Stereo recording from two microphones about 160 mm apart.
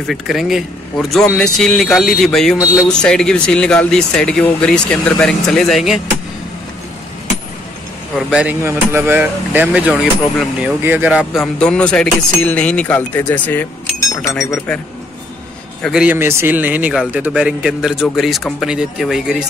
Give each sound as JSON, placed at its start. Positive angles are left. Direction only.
{"t": 0.0, "sound": "speech", "side_deg": 0}
{"t": 8.2, "sound": "speech", "side_deg": -5}
{"t": 11.6, "sound": "speech", "side_deg": 5}
{"t": 15.8, "sound": "speech", "side_deg": -5}